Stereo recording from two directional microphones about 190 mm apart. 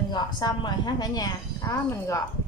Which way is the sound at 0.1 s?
25° left (ahead or behind).